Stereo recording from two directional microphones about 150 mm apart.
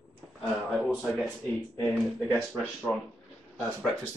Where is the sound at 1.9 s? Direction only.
5° left (ahead or behind).